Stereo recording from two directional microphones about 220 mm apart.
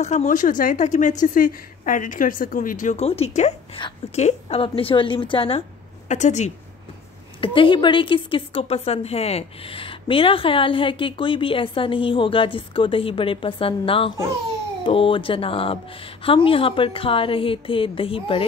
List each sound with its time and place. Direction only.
0.0 s a woman's voice: 30° left (ahead or behind)